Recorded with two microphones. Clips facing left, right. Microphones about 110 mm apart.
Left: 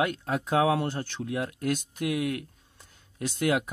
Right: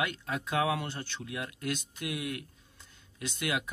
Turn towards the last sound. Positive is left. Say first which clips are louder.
# left 7 dB
turn(degrees=45)  # may be behind; listen again after turning